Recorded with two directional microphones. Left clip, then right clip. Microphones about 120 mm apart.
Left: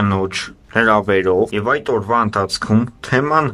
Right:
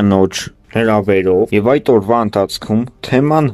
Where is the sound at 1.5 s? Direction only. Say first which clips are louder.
Right 6 dB; 35° right (ahead or behind).